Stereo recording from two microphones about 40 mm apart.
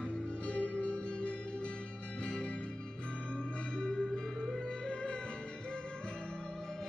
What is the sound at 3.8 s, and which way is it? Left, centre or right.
Music, centre.